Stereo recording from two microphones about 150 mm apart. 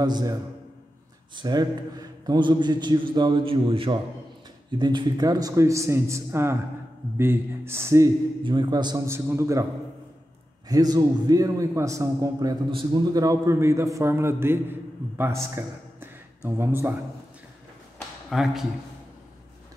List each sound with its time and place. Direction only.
0.0 s a man's voice: 25° right (ahead or behind)
8.5 s a man's voice: 30° right (ahead or behind)
9.0 s speech: 15° right (ahead or behind)
10.7 s a man's voice: 25° right (ahead or behind)
18.3 s a man's voice: centre (ahead or behind)